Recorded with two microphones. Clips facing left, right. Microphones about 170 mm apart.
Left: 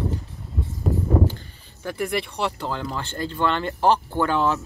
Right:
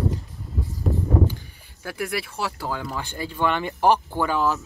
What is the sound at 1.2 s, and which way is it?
Speech, 10° right (ahead or behind).